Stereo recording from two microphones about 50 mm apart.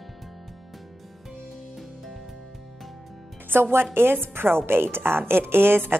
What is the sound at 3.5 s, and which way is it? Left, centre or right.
A woman's voice, right.